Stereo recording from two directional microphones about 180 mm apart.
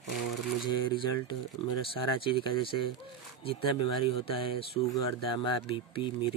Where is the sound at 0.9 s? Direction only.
25° left (ahead or behind).